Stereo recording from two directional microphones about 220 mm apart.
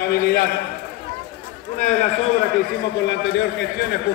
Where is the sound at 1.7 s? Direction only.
35° left (ahead or behind).